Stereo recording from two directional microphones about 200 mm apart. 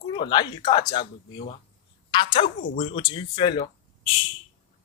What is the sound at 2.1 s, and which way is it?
Speech, 25° left (ahead or behind).